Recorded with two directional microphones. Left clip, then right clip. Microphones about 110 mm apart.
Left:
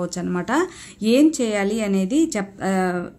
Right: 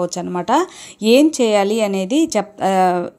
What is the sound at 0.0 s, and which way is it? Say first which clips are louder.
A woman's voice: right 5 dB; 40° right (ahead or behind).